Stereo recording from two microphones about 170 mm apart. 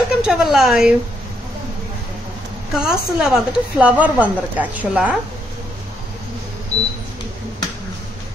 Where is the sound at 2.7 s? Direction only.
Centre (ahead or behind).